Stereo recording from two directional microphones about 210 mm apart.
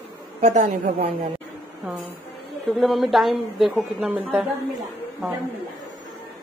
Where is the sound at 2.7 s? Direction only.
Centre (ahead or behind).